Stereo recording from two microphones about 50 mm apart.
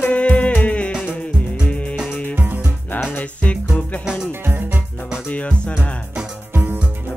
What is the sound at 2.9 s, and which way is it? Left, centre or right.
Music, left.